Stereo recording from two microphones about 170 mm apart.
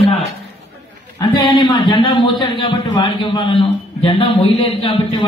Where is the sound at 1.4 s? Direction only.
30° left (ahead or behind).